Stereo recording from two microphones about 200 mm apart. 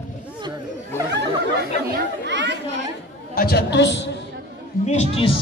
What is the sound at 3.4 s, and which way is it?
Speech, 55° left (ahead or behind).